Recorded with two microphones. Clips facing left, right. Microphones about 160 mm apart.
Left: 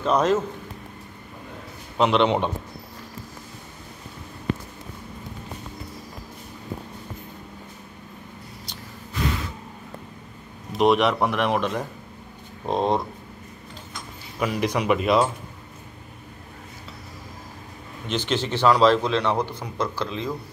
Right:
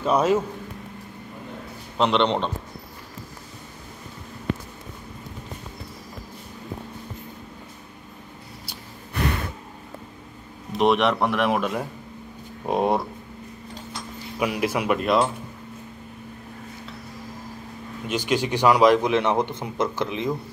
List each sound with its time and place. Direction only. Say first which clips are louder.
0.0 s a man's voice: even; 10° right (ahead or behind)
2.0 s speech: left 1 dB; centre (ahead or behind)
9.1 s a sound: right 1 dB; 60° right (ahead or behind)
10.7 s a man's voice: left 1 dB; centre (ahead or behind)
14.4 s speech: even; 5° right (ahead or behind)
18.0 s a man's voice: right 2 dB; 10° right (ahead or behind)